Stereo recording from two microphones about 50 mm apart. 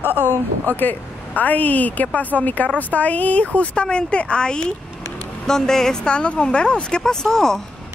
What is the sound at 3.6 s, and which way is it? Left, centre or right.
Speech, left.